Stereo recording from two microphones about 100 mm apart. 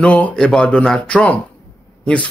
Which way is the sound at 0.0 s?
10° left (ahead or behind).